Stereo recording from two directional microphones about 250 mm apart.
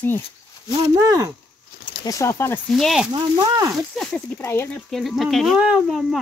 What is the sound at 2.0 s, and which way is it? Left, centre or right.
Speech, centre.